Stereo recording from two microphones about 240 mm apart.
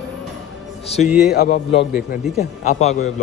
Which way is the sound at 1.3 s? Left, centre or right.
Left.